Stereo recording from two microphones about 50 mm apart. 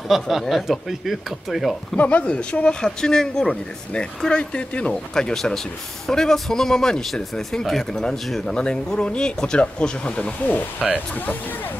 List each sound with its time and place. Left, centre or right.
0.1 s speech: centre
2.0 s speech: left
4.9 s speech: centre
10.8 s speech: centre